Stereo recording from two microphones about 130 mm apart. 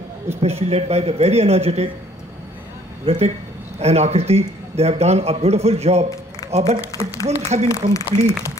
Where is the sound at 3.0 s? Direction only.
55° right (ahead or behind).